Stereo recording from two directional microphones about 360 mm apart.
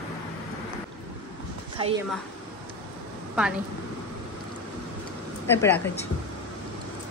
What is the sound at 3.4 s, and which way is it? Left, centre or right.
Speech, centre.